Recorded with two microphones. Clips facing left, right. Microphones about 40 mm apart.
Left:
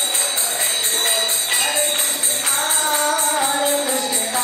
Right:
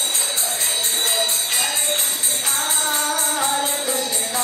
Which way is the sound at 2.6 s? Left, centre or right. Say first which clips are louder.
Left 4 dB; centre.